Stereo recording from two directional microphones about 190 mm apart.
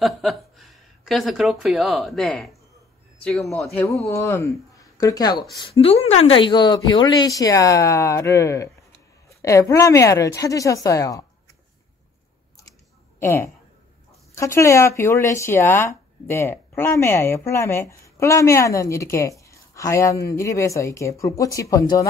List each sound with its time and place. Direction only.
0.0 s speech: centre (ahead or behind)
3.8 s speech: 15° left (ahead or behind)
5.6 s speech: 30° left (ahead or behind)
13.2 s speech: 15° left (ahead or behind)